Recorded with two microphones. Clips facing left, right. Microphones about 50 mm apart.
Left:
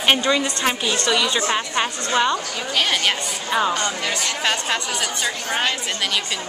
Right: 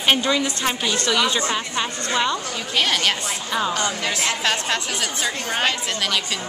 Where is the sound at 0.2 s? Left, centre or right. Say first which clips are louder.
Left 1 dB; centre.